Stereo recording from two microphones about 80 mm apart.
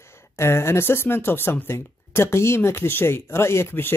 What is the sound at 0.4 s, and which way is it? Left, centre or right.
Speech, left.